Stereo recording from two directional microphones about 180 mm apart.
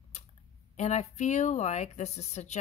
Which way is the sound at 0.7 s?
40° left (ahead or behind).